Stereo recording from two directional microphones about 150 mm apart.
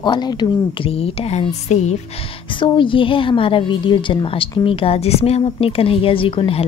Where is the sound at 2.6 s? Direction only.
35° left (ahead or behind).